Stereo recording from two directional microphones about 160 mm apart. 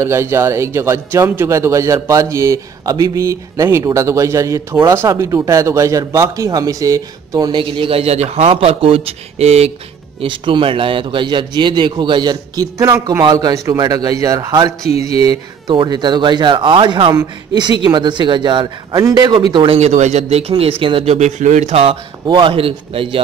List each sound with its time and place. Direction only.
0.0 s a man's voice: 15° right (ahead or behind)
14.9 s speech: 40° left (ahead or behind)
15.2 s a man's voice: 30° right (ahead or behind)
22.2 s a man's voice: 30° right (ahead or behind)